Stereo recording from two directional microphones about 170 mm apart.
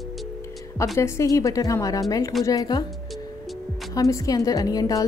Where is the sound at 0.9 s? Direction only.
15° left (ahead or behind).